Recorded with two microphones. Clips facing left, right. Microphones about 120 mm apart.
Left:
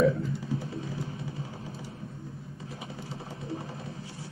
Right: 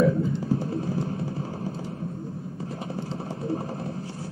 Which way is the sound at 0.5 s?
55° right (ahead or behind).